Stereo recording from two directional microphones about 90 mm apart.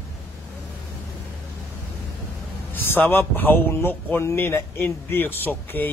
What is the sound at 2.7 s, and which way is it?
A man's voice, 20° left (ahead or behind).